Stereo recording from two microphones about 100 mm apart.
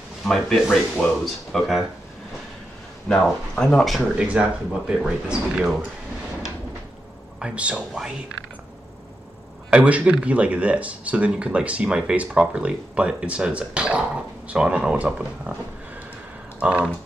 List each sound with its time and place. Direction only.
0.2 s speech: 5° left (ahead or behind)
3.1 s speech: 10° left (ahead or behind)
4.0 s speech: 10° right (ahead or behind)
7.3 s speech: 10° right (ahead or behind)
9.7 s speech: 15° right (ahead or behind)
16.5 s speech: 10° right (ahead or behind)